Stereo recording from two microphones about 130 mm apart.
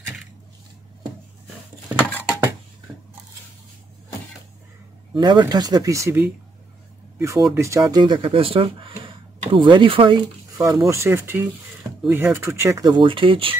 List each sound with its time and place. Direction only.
2.0 s a sound: 10° left (ahead or behind)
5.1 s speech: 35° right (ahead or behind)
8.0 s speech: 40° right (ahead or behind)
10.9 s speech: 20° right (ahead or behind); by 13.6 s 45° right (ahead or behind)